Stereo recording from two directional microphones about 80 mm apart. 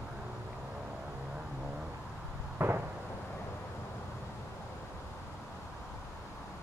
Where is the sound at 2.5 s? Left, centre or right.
Right.